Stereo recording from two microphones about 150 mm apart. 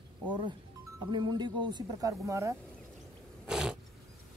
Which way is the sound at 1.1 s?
30° right (ahead or behind).